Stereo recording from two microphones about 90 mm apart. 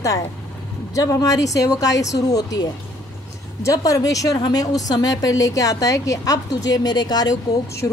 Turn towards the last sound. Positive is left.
turn(degrees=30)  # may be behind; listen again after turning